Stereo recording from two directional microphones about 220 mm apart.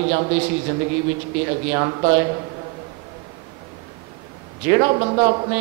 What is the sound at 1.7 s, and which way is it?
Speech, 20° right (ahead or behind).